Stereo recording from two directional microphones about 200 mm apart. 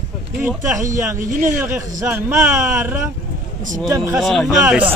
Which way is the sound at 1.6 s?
10° right (ahead or behind).